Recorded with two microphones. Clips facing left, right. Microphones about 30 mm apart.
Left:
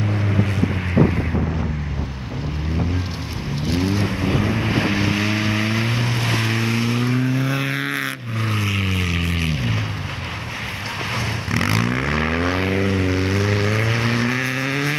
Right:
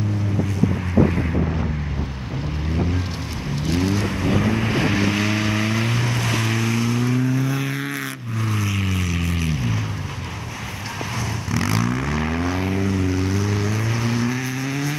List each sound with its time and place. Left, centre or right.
3.6 s vehicle: centre; by 9.8 s left
11.5 s vehicle: left